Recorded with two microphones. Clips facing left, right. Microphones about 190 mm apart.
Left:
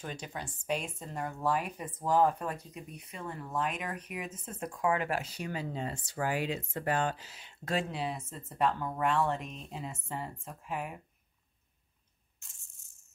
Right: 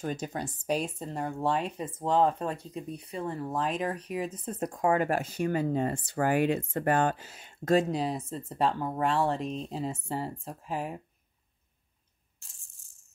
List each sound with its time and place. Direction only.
0.0 s speech: 45° right (ahead or behind)
12.4 s rattle: 35° right (ahead or behind)